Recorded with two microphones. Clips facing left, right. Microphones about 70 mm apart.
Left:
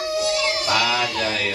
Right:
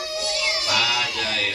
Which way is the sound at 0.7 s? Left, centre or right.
Left.